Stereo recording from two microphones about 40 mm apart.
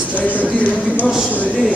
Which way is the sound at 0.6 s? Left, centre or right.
Left.